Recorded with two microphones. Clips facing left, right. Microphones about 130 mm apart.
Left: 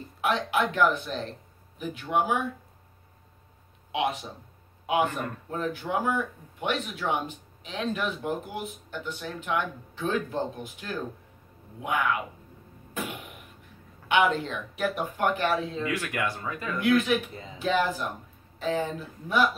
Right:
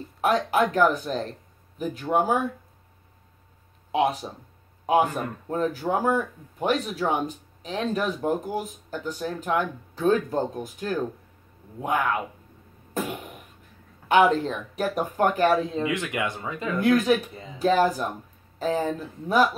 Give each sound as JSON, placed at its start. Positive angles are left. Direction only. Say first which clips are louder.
{"t": 0.2, "sound": "speech", "louder": "right 4 dB", "side_deg": -40}
{"t": 3.9, "sound": "speech", "louder": "right 5 dB", "side_deg": -35}
{"t": 14.0, "sound": "speech", "louder": "right 5 dB", "side_deg": -40}
{"t": 15.8, "sound": "speech", "louder": "right 3 dB", "side_deg": -20}
{"t": 16.7, "sound": "speech", "louder": "right 3 dB", "side_deg": -40}
{"t": 17.3, "sound": "speech", "louder": "right 1 dB", "side_deg": 0}
{"t": 17.6, "sound": "speech", "louder": "right 5 dB", "side_deg": -40}